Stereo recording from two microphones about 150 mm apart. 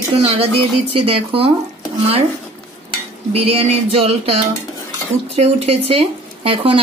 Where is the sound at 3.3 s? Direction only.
40° right (ahead or behind).